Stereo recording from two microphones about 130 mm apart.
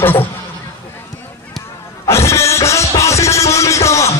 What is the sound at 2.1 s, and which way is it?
Speech, 20° left (ahead or behind).